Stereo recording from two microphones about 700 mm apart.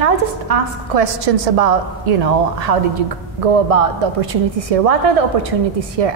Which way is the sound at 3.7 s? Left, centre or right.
Right.